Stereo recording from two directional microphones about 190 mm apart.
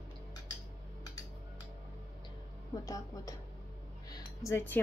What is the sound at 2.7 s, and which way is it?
Speech, 20° left (ahead or behind).